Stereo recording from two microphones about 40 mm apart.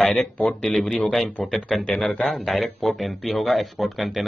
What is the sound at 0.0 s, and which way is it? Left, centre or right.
A man's voice, centre.